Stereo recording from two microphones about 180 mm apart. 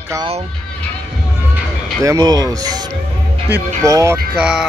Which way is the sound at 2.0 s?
20° right (ahead or behind).